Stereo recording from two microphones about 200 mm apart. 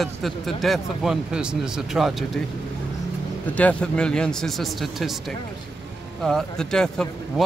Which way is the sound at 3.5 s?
5° left (ahead or behind).